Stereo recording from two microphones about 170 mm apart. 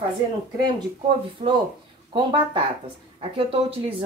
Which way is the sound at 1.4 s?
35° right (ahead or behind).